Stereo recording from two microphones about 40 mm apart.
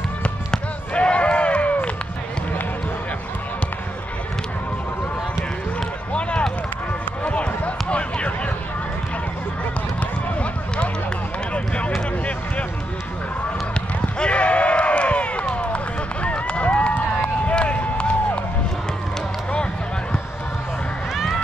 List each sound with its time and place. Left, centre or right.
0.5 s basketball bounce: left
7.2 s basketball bounce: left
11.5 s run: left
14.2 s run: left
19.5 s a sound: left